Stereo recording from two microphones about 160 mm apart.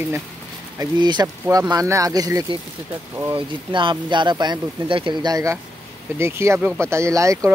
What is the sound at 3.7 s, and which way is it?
Speech, 30° right (ahead or behind).